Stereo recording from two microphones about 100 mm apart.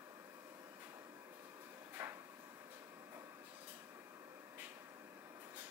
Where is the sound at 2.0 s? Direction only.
20° right (ahead or behind).